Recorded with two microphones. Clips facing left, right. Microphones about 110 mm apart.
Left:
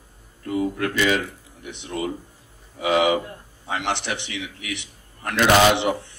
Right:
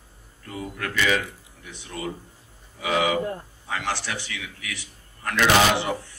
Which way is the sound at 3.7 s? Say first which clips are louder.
Left 3 dB; 20° left (ahead or behind).